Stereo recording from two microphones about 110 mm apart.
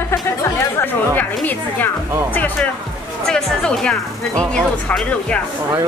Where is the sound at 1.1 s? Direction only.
15° left (ahead or behind).